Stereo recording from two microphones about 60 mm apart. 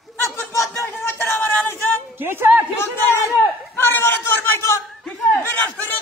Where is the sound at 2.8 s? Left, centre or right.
Left.